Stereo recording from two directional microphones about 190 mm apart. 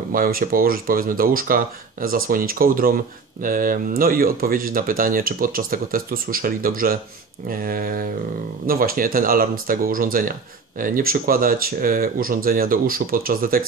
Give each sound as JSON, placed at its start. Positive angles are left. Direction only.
{"t": 0.1, "sound": "speech", "side_deg": -50}